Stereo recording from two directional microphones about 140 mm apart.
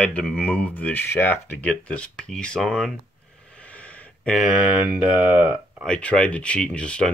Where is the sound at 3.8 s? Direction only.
10° left (ahead or behind).